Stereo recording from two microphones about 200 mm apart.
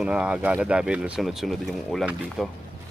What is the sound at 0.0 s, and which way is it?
A man's voice, 5° right (ahead or behind).